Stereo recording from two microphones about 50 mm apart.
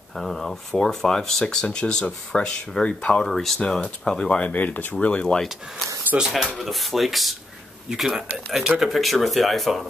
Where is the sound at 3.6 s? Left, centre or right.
Centre; by 4.9 s left.